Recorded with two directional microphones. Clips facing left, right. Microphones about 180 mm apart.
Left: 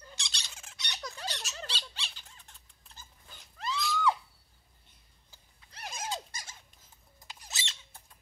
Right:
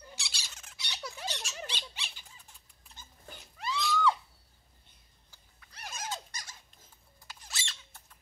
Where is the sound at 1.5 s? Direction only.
15° right (ahead or behind).